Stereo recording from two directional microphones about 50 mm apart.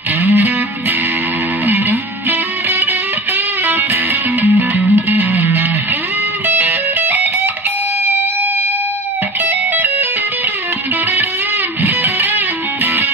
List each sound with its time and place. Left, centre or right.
0.2 s music: right
9.4 s music: right
11.8 s music: right